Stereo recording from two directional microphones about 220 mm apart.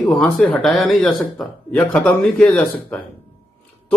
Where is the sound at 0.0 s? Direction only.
Centre (ahead or behind).